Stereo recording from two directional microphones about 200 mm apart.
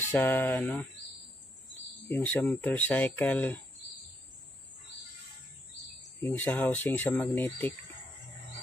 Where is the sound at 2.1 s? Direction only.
10° left (ahead or behind).